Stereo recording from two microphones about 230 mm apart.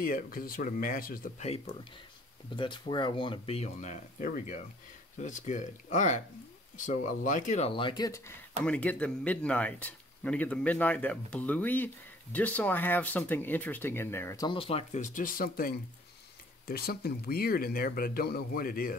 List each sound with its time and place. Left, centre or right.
0.0 s speech: left